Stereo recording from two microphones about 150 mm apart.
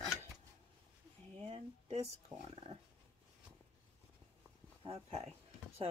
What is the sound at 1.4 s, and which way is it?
Speech, 45° right (ahead or behind).